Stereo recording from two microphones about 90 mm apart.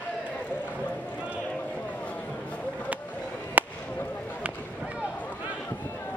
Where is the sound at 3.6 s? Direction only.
20° right (ahead or behind).